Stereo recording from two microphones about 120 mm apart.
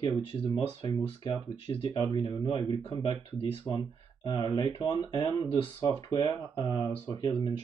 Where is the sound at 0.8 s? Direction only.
45° left (ahead or behind).